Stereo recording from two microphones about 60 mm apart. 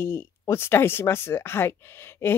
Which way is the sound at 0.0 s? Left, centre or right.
Left.